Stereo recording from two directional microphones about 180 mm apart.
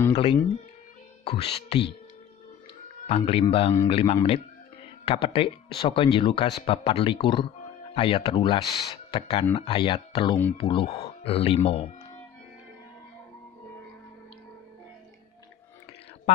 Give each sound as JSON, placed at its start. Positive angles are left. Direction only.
{"t": 0.1, "sound": "speech", "side_deg": 30}
{"t": 3.1, "sound": "speech", "side_deg": 35}